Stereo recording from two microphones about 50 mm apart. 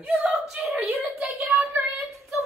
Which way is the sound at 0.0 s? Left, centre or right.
Right.